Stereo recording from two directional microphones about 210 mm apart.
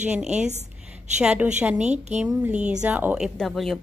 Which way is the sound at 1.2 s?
5° right (ahead or behind).